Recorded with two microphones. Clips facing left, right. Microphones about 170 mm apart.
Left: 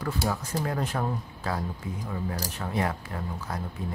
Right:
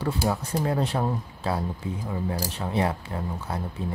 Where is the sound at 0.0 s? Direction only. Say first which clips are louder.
Right 3 dB; 30° right (ahead or behind).